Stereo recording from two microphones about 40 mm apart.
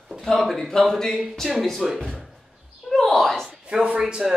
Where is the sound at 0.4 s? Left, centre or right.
Centre.